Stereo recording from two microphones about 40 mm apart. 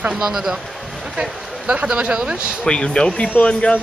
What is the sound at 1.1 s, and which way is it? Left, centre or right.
Speech, right.